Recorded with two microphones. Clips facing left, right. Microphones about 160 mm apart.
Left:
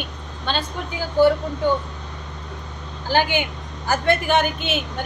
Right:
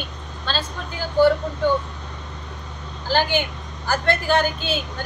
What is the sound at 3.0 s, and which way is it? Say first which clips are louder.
A woman's voice: left 1 dB; 15° left (ahead or behind).